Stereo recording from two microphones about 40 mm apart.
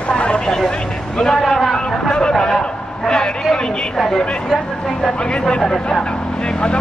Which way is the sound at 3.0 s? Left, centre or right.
Centre.